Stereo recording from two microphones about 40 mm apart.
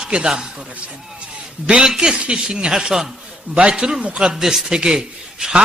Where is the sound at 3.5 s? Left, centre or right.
Right.